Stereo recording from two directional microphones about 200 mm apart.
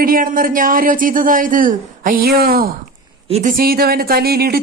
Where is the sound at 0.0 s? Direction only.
45° right (ahead or behind).